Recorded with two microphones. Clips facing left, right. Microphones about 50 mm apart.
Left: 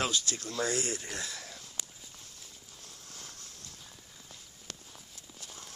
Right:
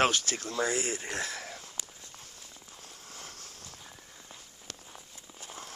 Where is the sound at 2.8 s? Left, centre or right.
Right.